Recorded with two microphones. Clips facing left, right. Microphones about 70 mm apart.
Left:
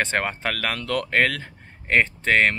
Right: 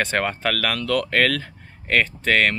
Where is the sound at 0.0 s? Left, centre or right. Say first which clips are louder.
Right 2 dB; left.